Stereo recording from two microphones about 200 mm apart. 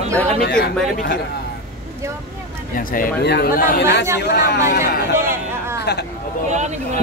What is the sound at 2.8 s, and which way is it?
Speech, 45° left (ahead or behind).